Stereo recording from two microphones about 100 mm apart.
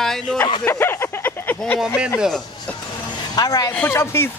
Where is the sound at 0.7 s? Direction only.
25° left (ahead or behind).